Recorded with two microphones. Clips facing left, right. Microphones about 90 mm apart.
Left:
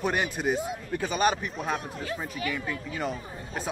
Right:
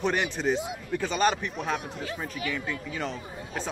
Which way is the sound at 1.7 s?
35° left (ahead or behind).